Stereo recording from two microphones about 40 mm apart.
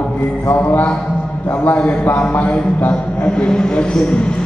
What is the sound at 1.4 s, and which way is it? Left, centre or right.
Speech, left.